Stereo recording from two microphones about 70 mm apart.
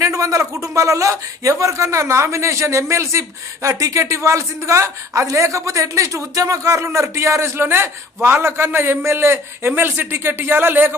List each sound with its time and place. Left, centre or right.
0.0 s a man's voice: right